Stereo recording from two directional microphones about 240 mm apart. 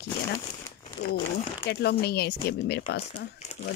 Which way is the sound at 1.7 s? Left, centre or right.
Left.